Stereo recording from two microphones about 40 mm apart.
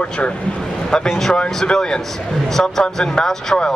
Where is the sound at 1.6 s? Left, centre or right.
Centre.